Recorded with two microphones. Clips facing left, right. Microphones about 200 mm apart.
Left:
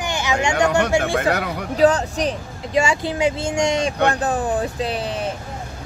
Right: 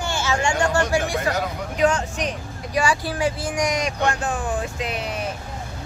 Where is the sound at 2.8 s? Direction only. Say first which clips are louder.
Left 3 dB; 25° left (ahead or behind).